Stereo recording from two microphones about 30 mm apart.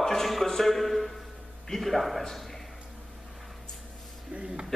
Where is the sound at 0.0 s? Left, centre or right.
Centre.